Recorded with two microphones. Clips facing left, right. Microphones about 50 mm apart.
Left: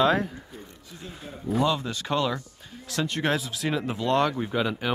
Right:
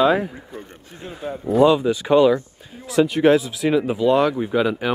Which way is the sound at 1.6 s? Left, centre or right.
Centre.